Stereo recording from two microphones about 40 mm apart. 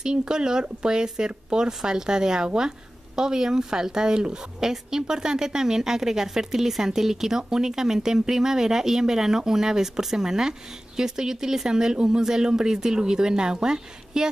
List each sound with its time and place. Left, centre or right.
0.0 s a woman's voice: centre